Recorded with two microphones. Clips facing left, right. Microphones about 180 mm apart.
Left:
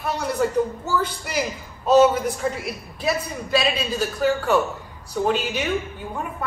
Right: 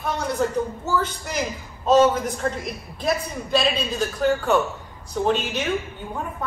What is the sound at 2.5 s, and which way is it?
A woman's voice, 5° left (ahead or behind).